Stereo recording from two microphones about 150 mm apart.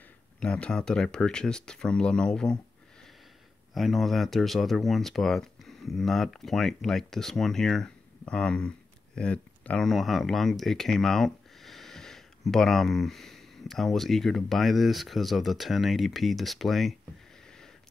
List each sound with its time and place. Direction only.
0.4 s speech: 5° left (ahead or behind)
3.7 s speech: centre (ahead or behind)